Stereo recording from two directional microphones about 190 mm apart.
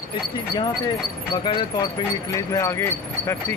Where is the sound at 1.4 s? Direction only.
25° left (ahead or behind).